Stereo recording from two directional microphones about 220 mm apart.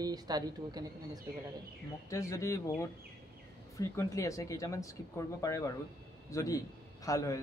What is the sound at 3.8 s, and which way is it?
A man's voice, 15° left (ahead or behind).